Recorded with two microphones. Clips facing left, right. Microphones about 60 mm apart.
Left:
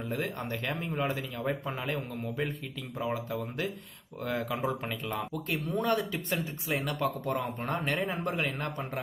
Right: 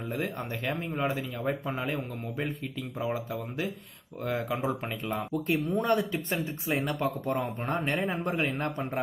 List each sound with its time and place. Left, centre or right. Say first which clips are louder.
0.4 s speech: right 1 dB; centre; by 8.0 s right
8.0 s speech: right 2 dB; centre
8.3 s speech: right 2 dB; right